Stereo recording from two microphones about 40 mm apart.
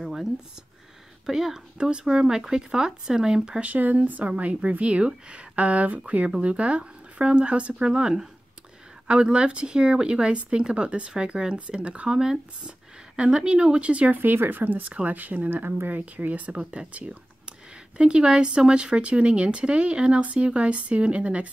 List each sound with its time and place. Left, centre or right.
0.0 s a sound: centre
1.2 s speech: centre
1.8 s speech: right
3.6 s speech: right
7.9 s speech: centre
14.1 s speech: right